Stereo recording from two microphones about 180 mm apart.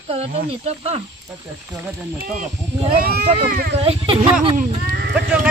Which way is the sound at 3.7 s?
35° right (ahead or behind).